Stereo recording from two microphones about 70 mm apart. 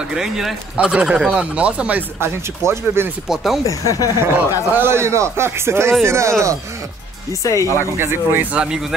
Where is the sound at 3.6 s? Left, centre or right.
Left.